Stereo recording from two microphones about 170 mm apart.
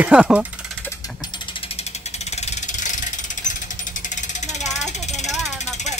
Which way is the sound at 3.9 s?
45° left (ahead or behind).